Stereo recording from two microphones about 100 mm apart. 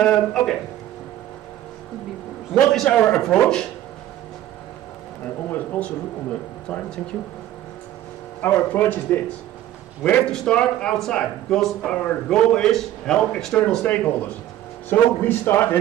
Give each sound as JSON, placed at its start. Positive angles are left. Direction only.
{"t": 0.0, "sound": "speech", "side_deg": 5}
{"t": 2.5, "sound": "speech", "side_deg": 5}
{"t": 5.5, "sound": "speech", "side_deg": 15}
{"t": 8.4, "sound": "a man's voice", "side_deg": 20}
{"t": 10.0, "sound": "speech", "side_deg": 10}
{"t": 13.8, "sound": "a man's voice", "side_deg": 15}